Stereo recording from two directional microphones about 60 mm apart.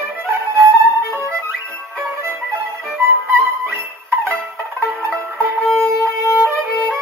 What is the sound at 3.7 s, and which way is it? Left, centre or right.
Music, right.